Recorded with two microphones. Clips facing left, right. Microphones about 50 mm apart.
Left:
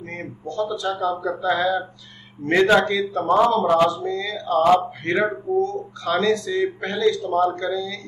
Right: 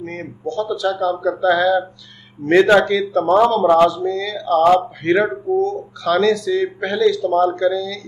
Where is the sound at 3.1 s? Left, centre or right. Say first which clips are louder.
Right 2 dB; right.